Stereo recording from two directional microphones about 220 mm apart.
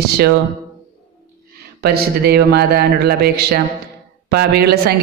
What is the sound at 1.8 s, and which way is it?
Speech, 45° right (ahead or behind).